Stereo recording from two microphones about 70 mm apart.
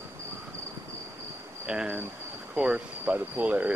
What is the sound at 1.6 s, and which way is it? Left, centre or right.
Speech, centre.